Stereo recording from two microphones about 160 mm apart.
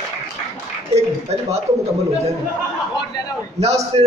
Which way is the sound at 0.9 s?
40° right (ahead or behind).